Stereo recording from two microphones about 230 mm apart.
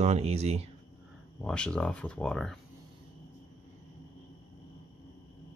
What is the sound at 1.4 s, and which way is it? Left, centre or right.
Speech, centre.